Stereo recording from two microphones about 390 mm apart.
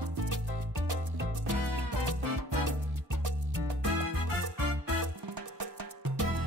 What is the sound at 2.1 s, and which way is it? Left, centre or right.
Salsa music, right.